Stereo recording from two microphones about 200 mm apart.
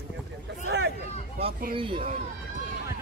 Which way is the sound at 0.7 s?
55° right (ahead or behind).